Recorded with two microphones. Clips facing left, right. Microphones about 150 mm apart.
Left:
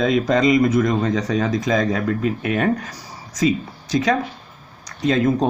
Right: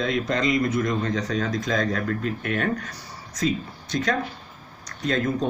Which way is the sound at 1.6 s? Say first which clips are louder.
Left 5 dB; 90° left.